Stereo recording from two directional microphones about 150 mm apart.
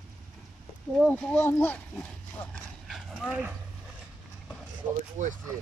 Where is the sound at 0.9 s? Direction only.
5° left (ahead or behind).